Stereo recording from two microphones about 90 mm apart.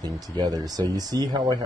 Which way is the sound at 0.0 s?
45° right (ahead or behind).